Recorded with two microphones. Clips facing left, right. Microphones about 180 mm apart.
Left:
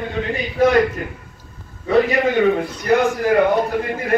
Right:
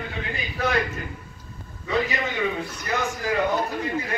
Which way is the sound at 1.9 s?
60° left (ahead or behind).